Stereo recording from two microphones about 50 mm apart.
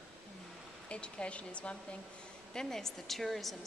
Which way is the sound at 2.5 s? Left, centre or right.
Centre.